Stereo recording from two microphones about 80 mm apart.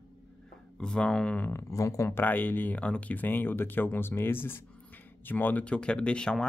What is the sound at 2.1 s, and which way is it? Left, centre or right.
Speech, left.